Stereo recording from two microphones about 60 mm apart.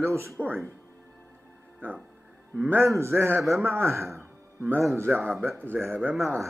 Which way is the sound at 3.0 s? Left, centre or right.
Right.